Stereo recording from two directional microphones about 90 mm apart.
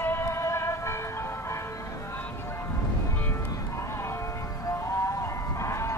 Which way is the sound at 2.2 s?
25° left (ahead or behind).